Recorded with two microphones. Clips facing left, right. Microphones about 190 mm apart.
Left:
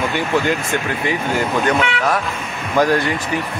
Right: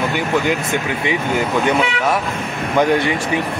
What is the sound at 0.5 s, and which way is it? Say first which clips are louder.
Speech: right 1 dB; 15° right (ahead or behind).